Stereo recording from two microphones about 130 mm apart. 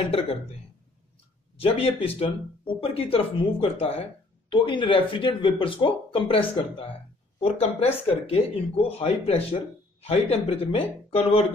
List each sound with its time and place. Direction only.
1.6 s speech: 50° left (ahead or behind)